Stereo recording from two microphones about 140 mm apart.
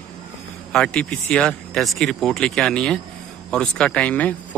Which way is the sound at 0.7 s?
5° left (ahead or behind).